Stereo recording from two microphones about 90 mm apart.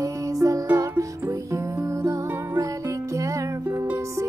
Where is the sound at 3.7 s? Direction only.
25° right (ahead or behind).